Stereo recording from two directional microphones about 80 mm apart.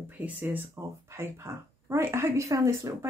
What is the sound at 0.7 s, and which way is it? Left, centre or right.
Speech, right.